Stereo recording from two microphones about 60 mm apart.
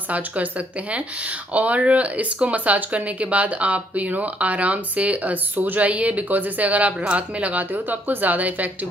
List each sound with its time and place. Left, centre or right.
0.1 s speech: right